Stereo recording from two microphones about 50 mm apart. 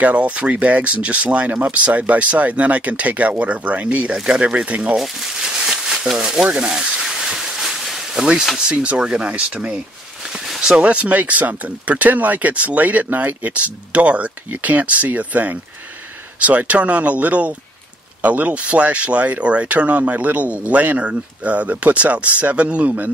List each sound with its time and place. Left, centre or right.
0.0 s speech: right
4.9 s speech: centre
5.4 s a sound: centre
8.2 s speech: centre
10.8 s speech: right